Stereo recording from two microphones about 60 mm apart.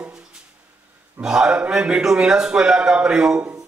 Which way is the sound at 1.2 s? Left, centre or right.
Centre.